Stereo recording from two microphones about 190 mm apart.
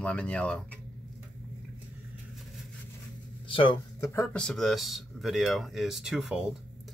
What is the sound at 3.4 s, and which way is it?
Speech, 30° left (ahead or behind).